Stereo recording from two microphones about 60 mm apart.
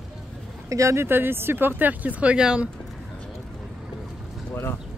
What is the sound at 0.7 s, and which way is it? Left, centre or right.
Speech, right.